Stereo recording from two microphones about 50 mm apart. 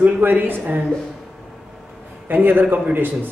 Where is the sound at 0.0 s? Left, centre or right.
Right.